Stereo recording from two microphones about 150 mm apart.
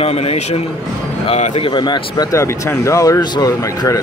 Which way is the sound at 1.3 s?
45° left (ahead or behind).